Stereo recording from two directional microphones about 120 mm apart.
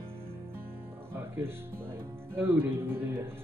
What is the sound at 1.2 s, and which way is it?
Speech, 20° right (ahead or behind).